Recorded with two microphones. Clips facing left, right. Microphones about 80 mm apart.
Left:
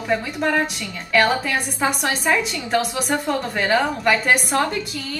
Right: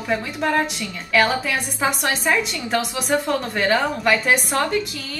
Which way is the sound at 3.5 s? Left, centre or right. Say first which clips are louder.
Even; centre.